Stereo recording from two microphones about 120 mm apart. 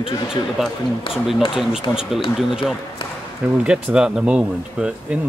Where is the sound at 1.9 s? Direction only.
20° left (ahead or behind).